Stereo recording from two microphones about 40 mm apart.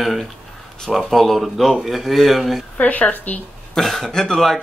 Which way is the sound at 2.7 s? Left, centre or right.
Left.